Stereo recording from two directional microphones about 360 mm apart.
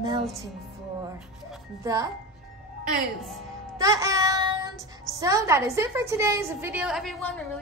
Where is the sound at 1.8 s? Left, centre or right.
Centre.